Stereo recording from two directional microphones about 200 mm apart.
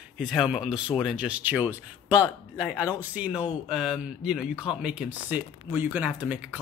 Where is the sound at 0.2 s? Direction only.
Centre (ahead or behind).